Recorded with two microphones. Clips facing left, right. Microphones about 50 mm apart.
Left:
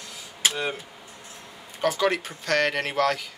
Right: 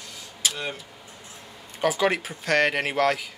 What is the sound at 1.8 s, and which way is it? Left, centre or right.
Speech, centre.